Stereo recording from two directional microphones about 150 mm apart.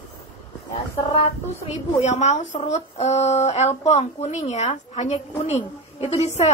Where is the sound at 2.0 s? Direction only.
50° left (ahead or behind).